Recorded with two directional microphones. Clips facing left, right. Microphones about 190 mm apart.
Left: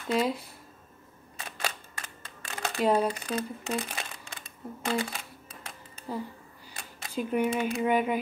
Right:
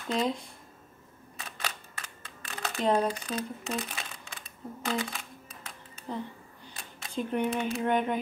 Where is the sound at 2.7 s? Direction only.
5° left (ahead or behind).